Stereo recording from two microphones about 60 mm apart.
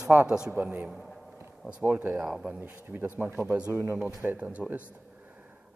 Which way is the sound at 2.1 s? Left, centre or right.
Centre.